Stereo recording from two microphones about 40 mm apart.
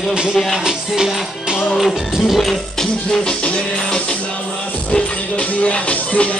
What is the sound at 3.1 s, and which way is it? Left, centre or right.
Music, centre.